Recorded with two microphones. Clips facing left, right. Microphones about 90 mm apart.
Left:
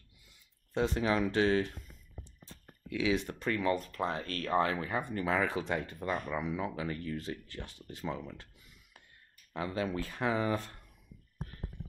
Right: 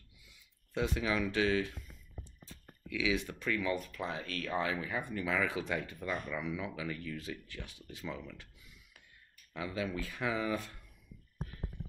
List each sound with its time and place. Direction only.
0.2 s speech: 35° left (ahead or behind)
8.4 s a sound: 40° left (ahead or behind)
9.5 s speech: 40° left (ahead or behind)